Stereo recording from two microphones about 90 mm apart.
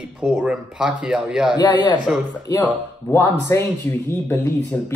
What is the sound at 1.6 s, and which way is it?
Speech, 50° left (ahead or behind).